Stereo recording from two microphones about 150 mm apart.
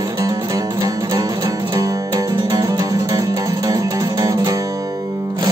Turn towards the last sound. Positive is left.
turn(degrees=-25)  # may be behind; listen again after turning